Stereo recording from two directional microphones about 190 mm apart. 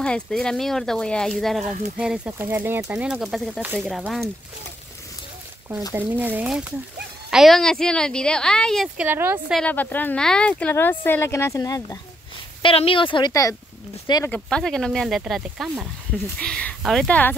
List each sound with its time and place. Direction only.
0.0 s a woman's voice: 5° left (ahead or behind)
5.9 s a woman's voice: 10° right (ahead or behind)
9.6 s speech: 10° left (ahead or behind)
12.6 s speech: 30° left (ahead or behind)
14.3 s a woman's voice: 5° left (ahead or behind)
16.3 s a woman's voice: 5° left (ahead or behind)